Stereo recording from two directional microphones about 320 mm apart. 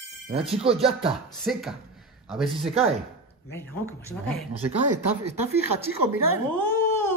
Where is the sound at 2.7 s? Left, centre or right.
Centre.